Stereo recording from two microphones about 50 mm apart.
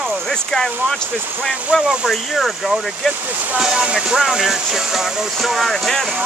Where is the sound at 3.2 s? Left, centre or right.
Right.